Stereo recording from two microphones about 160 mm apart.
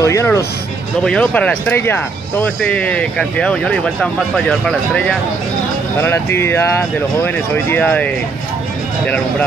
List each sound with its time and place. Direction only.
0.0 s speech: 20° left (ahead or behind)